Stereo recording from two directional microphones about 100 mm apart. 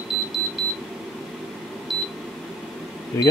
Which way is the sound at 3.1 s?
30° left (ahead or behind).